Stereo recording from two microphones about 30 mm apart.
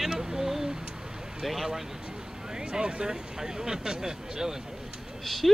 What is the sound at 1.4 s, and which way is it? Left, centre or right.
Speech, centre.